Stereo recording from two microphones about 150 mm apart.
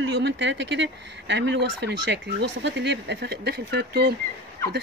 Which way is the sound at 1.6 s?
90° right.